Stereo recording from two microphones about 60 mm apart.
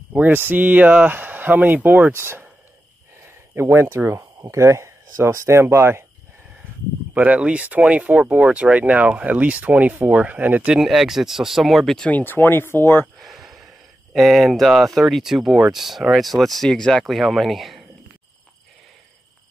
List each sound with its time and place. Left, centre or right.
0.1 s speech: right
2.1 s speech: right
3.3 s a sound: right
4.2 s speech: right
7.2 s speech: right
9.9 s speech: right
10.7 s speech: centre
12.1 s speech: left
13.2 s a sound: centre
14.1 s speech: centre